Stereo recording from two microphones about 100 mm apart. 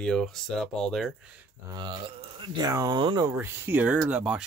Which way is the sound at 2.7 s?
35° right (ahead or behind).